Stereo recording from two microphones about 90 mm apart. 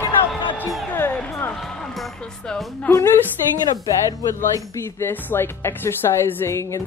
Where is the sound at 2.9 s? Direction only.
20° left (ahead or behind).